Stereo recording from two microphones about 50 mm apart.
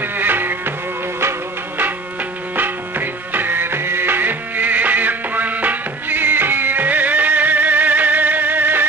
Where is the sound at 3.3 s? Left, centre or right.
Right.